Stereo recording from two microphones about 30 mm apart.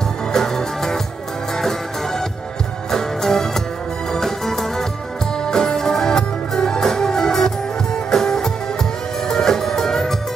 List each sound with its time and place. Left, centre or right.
0.3 s music: centre